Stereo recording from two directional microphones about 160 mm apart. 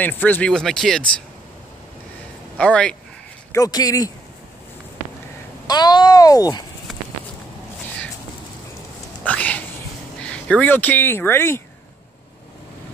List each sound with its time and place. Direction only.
0.0 s speech: 10° left (ahead or behind)
2.5 s speech: 5° left (ahead or behind)
3.5 s a child's voice: 20° left (ahead or behind)
5.7 s a child's voice: 25° left (ahead or behind)
9.2 s cat: 10° left (ahead or behind)
10.2 s speech: 5° left (ahead or behind)